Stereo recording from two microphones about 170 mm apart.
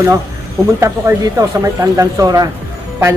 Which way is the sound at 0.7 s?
15° right (ahead or behind).